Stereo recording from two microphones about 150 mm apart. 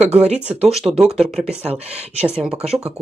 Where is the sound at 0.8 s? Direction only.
20° right (ahead or behind).